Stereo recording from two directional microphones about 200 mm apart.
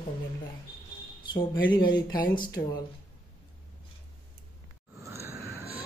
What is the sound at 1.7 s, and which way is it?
Speech, 20° left (ahead or behind).